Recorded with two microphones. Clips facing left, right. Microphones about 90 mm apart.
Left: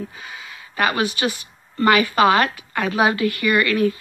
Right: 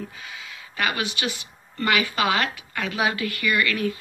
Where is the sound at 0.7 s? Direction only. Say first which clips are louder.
Left 6 dB; 35° left (ahead or behind).